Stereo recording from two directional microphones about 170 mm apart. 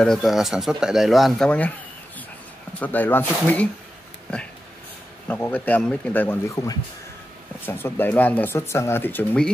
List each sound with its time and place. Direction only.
0.0 s speech: centre (ahead or behind)
2.8 s speech: 10° left (ahead or behind)
5.3 s speech: 10° left (ahead or behind)
6.5 s speech: 20° left (ahead or behind)